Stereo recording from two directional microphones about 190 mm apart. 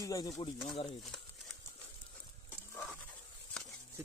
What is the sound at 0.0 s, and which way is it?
Speech, 20° left (ahead or behind).